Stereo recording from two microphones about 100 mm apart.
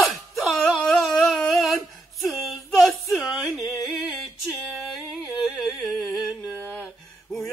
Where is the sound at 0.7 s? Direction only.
Centre (ahead or behind).